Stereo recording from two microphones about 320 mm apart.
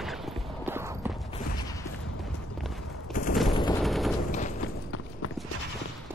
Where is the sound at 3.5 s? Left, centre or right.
Centre.